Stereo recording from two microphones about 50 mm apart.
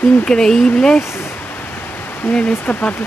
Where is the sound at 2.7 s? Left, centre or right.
Left.